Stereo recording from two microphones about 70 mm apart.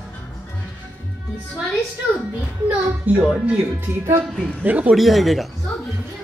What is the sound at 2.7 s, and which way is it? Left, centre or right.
Speech, right.